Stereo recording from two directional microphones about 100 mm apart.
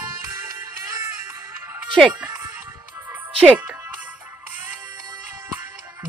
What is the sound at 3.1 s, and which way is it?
Music, 15° right (ahead or behind).